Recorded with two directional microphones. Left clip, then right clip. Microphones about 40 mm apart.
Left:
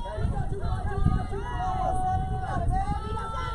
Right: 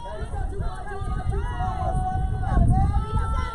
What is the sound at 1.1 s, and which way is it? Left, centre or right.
Vehicle, right.